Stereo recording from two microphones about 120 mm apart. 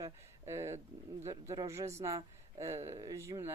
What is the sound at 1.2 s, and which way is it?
Speech, 25° right (ahead or behind).